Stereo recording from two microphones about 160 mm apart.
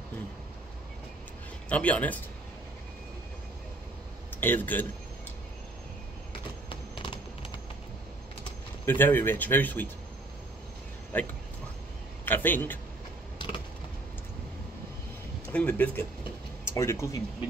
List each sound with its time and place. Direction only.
1.7 s speech: 10° left (ahead or behind)
4.4 s speech: 10° left (ahead or behind)
6.7 s a sound: 30° left (ahead or behind)
8.8 s speech: 10° left (ahead or behind)
11.1 s speech: 10° left (ahead or behind)
13.4 s a sound: 30° left (ahead or behind)
15.5 s speech: 10° left (ahead or behind)